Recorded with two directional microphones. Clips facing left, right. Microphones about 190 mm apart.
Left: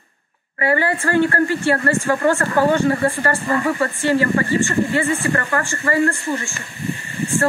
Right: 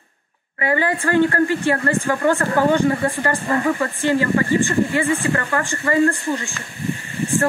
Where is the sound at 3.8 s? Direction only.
15° right (ahead or behind).